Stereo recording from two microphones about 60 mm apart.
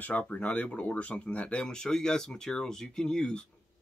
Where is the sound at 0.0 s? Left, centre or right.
Left.